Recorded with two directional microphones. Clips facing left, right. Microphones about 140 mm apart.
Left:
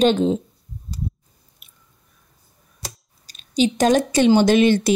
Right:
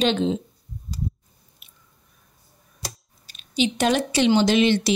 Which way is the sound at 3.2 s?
40° left (ahead or behind).